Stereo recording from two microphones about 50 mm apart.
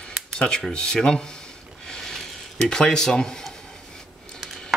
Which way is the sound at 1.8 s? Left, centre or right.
Centre.